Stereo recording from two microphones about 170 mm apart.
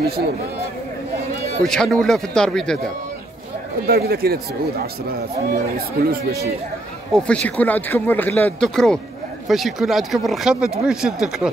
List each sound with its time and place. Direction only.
1.6 s speech: 5° left (ahead or behind)
3.8 s speech: 65° right (ahead or behind)
7.2 s speech: 5° left (ahead or behind)